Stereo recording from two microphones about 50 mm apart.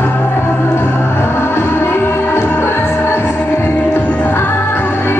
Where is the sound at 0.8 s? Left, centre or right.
Left.